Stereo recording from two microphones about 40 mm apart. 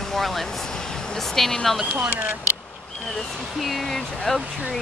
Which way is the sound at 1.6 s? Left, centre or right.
Centre.